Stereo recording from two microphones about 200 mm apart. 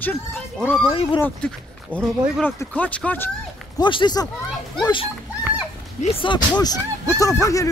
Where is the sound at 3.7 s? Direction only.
20° left (ahead or behind).